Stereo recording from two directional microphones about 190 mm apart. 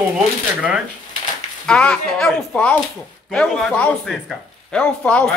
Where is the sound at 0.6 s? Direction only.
5° right (ahead or behind).